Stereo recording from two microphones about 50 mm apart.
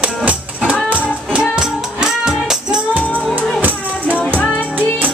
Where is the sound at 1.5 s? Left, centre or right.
Centre.